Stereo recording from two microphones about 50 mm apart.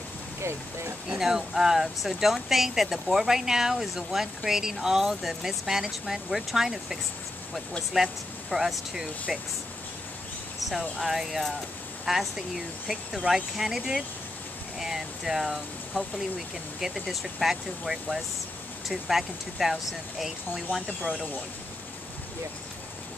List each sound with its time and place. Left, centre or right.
0.4 s speech: right
1.0 s speech: centre
10.7 s speech: centre